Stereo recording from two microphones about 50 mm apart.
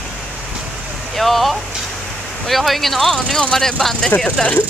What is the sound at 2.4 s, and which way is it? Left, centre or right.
Speech, centre.